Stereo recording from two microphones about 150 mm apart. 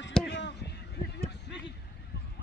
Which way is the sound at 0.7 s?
90° left.